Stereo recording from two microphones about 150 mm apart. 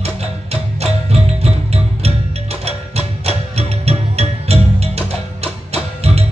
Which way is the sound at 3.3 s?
45° right (ahead or behind).